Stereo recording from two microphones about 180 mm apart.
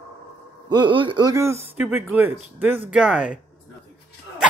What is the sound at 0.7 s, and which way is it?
Speech, 25° right (ahead or behind).